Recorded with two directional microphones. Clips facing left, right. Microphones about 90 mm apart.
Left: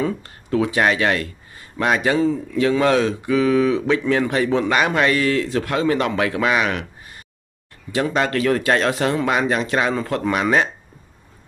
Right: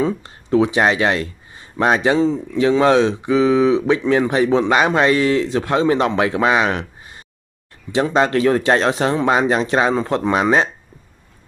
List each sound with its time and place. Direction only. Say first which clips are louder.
0.0 s speech: right 3 dB; 20° right (ahead or behind)